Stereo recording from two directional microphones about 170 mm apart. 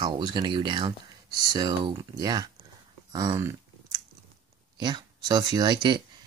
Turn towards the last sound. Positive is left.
turn(degrees=-25)  # may be behind; listen again after turning